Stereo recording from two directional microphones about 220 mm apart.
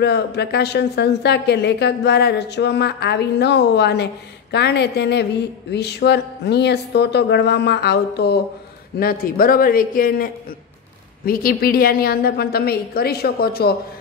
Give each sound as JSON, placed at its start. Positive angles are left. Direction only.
{"t": 0.0, "sound": "a woman's voice", "side_deg": 50}